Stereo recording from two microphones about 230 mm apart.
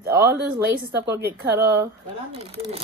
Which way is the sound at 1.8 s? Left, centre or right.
Right.